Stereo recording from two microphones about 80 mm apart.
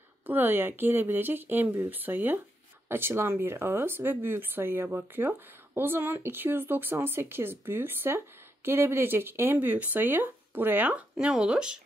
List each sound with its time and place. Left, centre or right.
0.3 s speech: right